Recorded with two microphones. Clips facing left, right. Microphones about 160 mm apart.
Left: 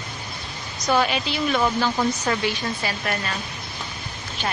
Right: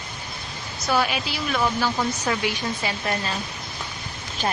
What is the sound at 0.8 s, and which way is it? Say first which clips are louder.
Speech: left 2 dB; 5° right (ahead or behind).